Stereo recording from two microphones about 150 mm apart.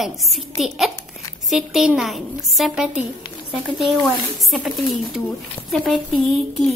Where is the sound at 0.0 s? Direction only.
Centre (ahead or behind).